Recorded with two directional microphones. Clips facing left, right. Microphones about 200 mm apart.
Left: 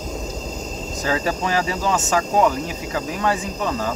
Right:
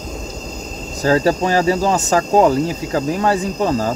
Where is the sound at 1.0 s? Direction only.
35° right (ahead or behind).